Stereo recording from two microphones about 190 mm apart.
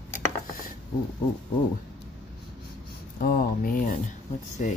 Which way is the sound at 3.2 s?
45° left (ahead or behind).